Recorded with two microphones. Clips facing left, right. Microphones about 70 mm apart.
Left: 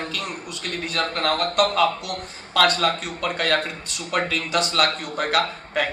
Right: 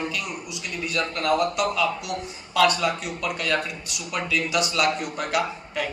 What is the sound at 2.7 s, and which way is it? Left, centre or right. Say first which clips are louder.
A man's voice: left 2 dB; left.